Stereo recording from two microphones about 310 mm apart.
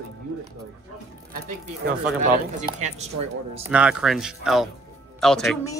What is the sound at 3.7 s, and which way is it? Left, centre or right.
Speech, centre.